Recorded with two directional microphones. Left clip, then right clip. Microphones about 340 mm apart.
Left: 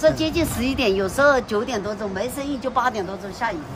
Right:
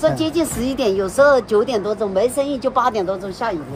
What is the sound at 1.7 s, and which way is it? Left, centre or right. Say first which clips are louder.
Speech: right 6 dB; centre.